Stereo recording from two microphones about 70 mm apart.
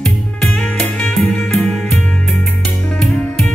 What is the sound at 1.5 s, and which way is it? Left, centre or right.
Music, centre.